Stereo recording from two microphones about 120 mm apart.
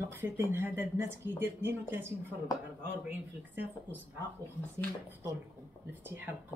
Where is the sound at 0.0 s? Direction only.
20° right (ahead or behind).